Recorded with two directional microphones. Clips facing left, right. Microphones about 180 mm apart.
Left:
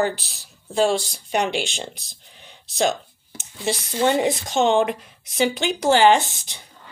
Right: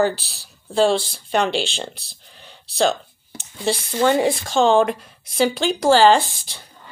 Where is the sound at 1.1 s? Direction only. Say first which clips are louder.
Right 2 dB; 15° left (ahead or behind).